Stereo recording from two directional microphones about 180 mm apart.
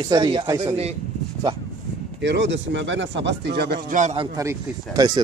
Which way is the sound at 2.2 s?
80° right.